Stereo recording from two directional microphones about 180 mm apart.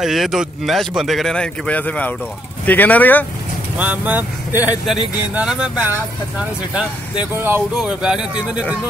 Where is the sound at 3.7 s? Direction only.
10° right (ahead or behind).